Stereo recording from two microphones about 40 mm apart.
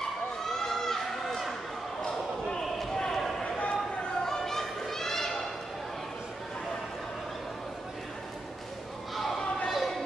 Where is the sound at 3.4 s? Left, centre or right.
Left.